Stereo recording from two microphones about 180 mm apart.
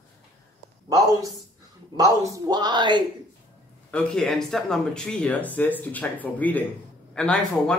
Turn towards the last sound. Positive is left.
turn(degrees=5)  # may be behind; listen again after turning